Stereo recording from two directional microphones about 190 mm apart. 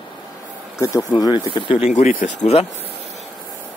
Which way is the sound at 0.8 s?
15° left (ahead or behind).